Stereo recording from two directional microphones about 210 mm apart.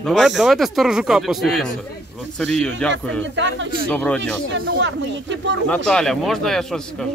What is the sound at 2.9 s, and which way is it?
Speech, 60° right (ahead or behind).